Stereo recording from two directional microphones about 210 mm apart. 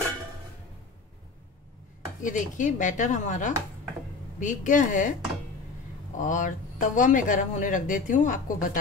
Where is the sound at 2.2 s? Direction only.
40° left (ahead or behind).